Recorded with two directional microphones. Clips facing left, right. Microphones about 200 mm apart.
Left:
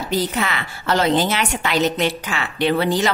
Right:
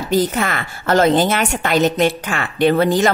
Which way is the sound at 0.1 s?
50° right (ahead or behind).